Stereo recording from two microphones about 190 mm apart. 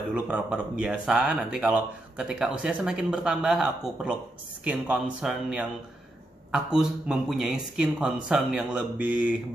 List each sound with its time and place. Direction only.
0.1 s speech: 5° right (ahead or behind)